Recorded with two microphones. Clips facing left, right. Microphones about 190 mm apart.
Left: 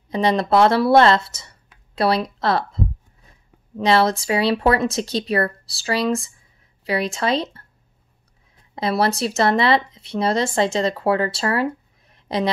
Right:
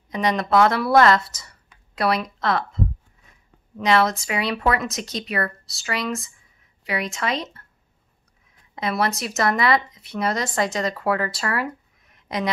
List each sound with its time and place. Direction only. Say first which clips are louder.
0.1 s a woman's voice: left 3 dB; 30° left (ahead or behind)
8.5 s speech: left 3 dB; 30° left (ahead or behind)